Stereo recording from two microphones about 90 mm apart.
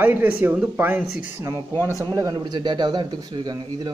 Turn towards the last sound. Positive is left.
turn(degrees=-45)  # may be behind; listen again after turning